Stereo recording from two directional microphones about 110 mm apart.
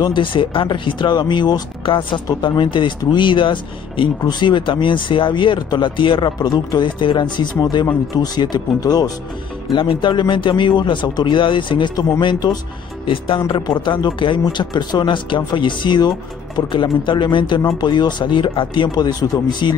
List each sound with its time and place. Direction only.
0.0 s speech: 45° left (ahead or behind)
9.7 s speech: 45° left (ahead or behind)
17.6 s speech: 30° left (ahead or behind)
17.8 s speech: 40° left (ahead or behind)